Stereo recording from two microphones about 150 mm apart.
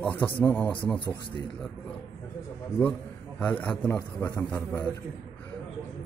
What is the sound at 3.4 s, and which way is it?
A man's voice, 5° left (ahead or behind).